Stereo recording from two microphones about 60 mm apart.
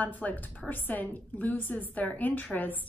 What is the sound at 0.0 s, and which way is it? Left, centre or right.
A woman's voice, left.